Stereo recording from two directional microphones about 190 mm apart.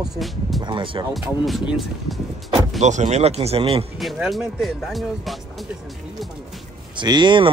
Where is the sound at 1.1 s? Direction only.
Centre (ahead or behind).